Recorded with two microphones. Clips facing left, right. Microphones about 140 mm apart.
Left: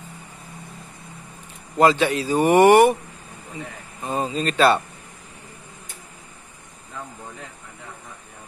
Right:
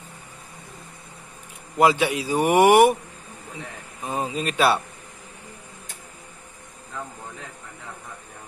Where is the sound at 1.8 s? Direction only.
10° right (ahead or behind).